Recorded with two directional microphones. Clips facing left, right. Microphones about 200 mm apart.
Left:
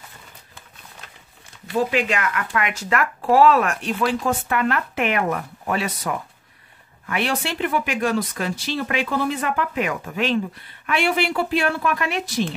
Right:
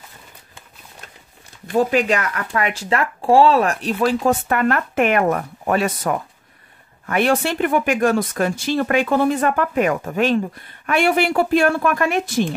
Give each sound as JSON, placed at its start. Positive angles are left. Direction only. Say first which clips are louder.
{"t": 1.7, "sound": "speech", "louder": "right 4 dB", "side_deg": -45}